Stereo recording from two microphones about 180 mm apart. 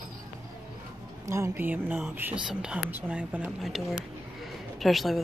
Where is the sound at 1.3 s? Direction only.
15° right (ahead or behind).